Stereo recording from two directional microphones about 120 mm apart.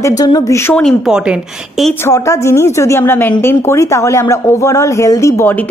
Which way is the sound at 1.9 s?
25° left (ahead or behind).